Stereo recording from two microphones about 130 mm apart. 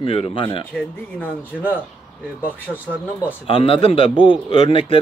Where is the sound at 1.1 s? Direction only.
15° left (ahead or behind).